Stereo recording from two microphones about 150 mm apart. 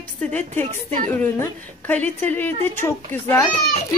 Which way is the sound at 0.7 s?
50° right (ahead or behind).